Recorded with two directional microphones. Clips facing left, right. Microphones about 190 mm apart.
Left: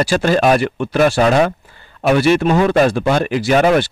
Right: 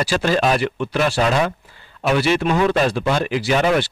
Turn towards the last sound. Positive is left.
turn(degrees=50)  # may be behind; listen again after turning